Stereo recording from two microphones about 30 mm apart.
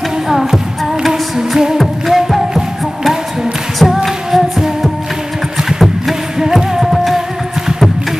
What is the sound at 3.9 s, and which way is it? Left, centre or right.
Music, centre.